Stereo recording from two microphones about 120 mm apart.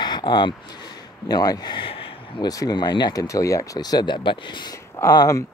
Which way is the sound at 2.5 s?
30° left (ahead or behind).